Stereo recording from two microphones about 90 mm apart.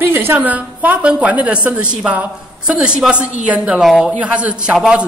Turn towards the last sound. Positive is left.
turn(degrees=-10)  # may be behind; listen again after turning